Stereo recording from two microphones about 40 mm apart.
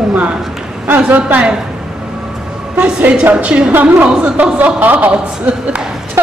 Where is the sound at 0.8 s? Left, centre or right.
Right.